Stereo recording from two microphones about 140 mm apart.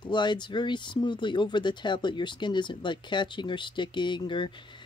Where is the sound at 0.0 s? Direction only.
35° left (ahead or behind).